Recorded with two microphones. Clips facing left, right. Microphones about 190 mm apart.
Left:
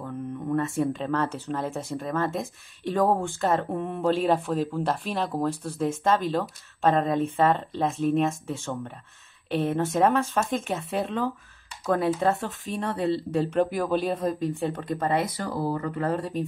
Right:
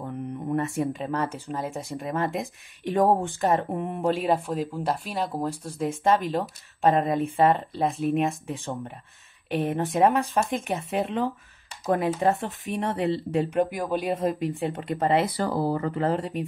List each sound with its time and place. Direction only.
0.0 s speech: 20° right (ahead or behind)